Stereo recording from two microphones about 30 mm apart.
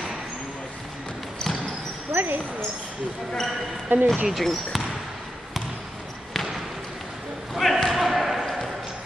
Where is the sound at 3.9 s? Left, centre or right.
Right.